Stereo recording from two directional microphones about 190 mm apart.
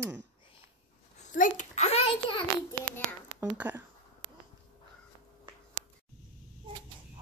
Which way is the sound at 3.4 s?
10° right (ahead or behind).